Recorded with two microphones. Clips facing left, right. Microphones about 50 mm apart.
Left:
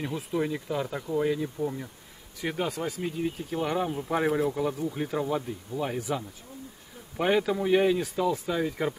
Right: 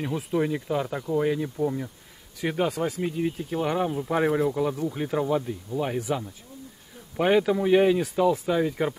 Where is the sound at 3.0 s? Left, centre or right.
Centre.